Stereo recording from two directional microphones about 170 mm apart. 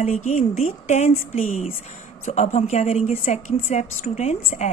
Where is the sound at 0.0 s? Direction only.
45° left (ahead or behind).